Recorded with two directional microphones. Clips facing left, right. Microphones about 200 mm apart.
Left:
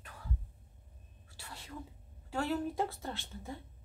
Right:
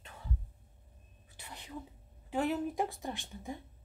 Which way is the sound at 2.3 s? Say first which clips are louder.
Right 2 dB; 20° right (ahead or behind).